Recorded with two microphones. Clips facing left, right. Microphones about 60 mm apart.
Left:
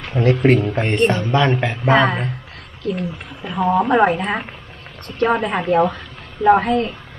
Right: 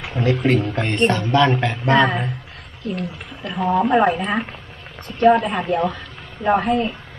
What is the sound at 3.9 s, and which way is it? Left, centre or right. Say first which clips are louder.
Speech: left 1 dB; left.